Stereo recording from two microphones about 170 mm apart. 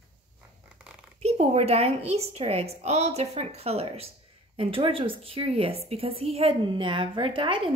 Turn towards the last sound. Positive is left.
turn(degrees=-30)  # may be behind; listen again after turning